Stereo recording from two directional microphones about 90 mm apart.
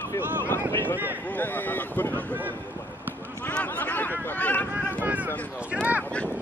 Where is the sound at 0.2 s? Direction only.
20° right (ahead or behind).